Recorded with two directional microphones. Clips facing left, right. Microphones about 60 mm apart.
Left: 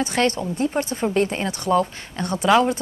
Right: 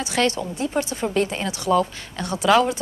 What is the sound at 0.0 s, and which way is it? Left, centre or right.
Speech, left.